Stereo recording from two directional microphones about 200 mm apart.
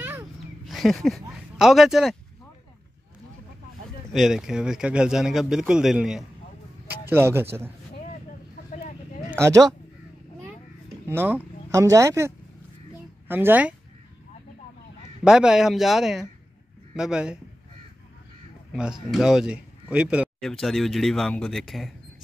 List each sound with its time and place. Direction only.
0.7 s speech: centre (ahead or behind)
4.1 s speech: centre (ahead or behind)
9.3 s speech: 15° right (ahead or behind)
11.1 s speech: 10° right (ahead or behind)
13.3 s speech: 10° right (ahead or behind)
15.2 s speech: 5° right (ahead or behind)
18.7 s speech: 5° right (ahead or behind)